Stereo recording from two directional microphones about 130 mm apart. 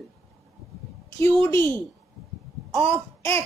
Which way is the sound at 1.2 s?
20° left (ahead or behind).